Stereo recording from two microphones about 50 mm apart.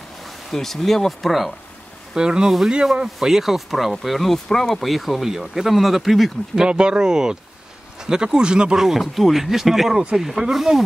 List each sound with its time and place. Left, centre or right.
0.2 s speech: centre
2.1 s speech: centre
6.6 s speech: centre
8.8 s speech: centre